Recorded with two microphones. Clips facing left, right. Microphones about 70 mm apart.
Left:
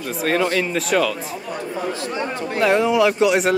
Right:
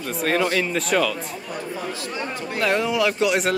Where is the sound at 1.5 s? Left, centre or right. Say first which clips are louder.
Left 4 dB; centre.